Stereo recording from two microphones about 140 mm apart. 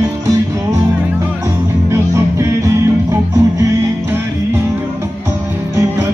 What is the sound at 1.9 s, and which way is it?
Music, 20° right (ahead or behind).